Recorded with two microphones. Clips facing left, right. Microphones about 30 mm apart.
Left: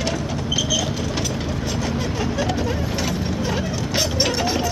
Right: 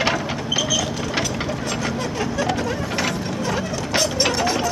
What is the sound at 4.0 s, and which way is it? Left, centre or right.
Mechanisms, centre.